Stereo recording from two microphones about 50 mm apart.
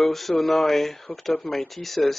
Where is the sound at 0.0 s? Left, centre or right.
Centre.